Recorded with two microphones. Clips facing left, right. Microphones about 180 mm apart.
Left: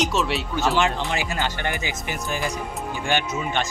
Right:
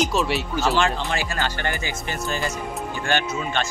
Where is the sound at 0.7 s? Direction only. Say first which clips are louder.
Even; 15° left (ahead or behind).